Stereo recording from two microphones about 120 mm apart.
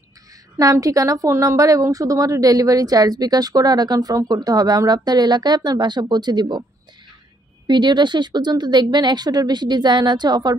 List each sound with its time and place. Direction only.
0.6 s a woman's voice: 30° right (ahead or behind)
7.6 s a woman's voice: 40° right (ahead or behind)